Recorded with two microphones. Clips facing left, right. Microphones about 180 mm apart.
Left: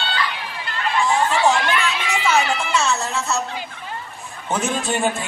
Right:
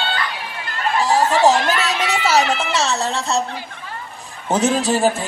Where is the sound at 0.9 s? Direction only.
40° right (ahead or behind).